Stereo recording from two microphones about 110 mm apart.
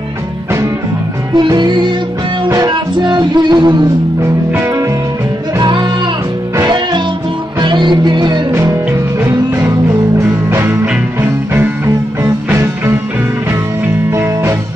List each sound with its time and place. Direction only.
1.3 s music: 40° right (ahead or behind)
4.5 s music: 20° right (ahead or behind)
5.6 s music: 40° right (ahead or behind)
8.5 s music: 30° right (ahead or behind)
14.1 s music: 25° right (ahead or behind)